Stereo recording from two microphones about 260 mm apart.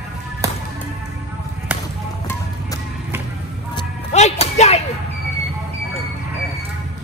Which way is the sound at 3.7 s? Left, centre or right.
Left.